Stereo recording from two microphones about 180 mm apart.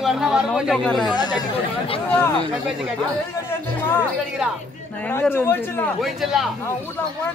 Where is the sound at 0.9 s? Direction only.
25° left (ahead or behind).